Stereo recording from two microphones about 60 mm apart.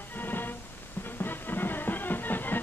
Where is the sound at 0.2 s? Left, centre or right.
Left.